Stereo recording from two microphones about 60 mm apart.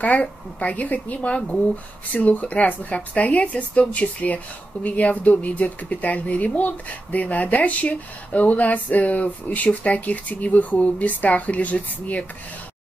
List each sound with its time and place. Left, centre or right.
0.0 s a woman's voice: left